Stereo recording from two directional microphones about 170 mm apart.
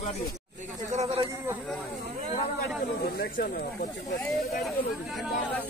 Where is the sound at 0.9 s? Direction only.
35° right (ahead or behind).